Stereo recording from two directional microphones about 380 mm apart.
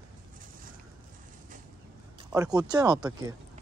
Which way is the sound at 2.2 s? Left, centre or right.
Centre.